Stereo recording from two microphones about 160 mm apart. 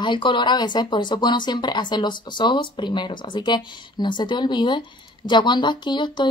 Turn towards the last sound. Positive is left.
turn(degrees=30)  # may be behind; listen again after turning